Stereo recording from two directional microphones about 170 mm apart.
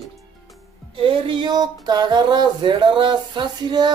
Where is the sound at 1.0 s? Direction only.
30° right (ahead or behind).